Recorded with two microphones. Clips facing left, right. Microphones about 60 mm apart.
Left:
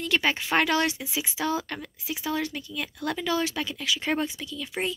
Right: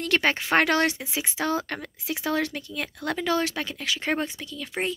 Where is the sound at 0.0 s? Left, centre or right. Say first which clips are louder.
Right 2 dB; right.